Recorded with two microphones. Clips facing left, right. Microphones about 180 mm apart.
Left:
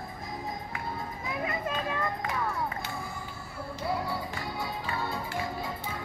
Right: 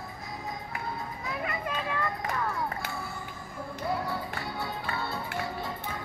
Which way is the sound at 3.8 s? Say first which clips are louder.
Even; 10° left (ahead or behind).